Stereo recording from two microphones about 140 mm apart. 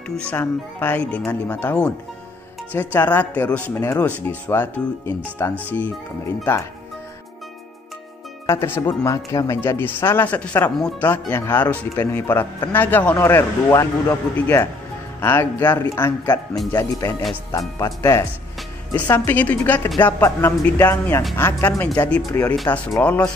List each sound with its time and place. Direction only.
0.3 s speech: 15° left (ahead or behind)
8.5 s speech: 15° left (ahead or behind)
17.5 s speech: 25° left (ahead or behind)